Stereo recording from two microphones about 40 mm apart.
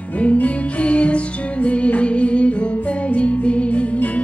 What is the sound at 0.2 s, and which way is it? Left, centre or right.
Music, left.